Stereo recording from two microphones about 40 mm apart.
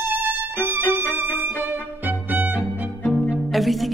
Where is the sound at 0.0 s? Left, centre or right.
Right.